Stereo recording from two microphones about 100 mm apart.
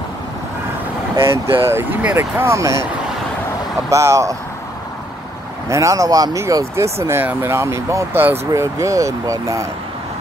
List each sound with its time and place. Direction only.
1.1 s speech: 25° right (ahead or behind)
3.9 s speech: 30° right (ahead or behind)
5.7 s speech: 30° right (ahead or behind)